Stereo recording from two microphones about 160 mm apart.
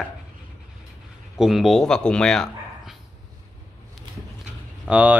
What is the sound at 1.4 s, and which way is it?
Speech, centre (ahead or behind).